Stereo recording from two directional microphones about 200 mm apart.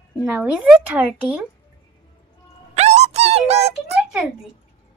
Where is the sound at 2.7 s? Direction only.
35° right (ahead or behind).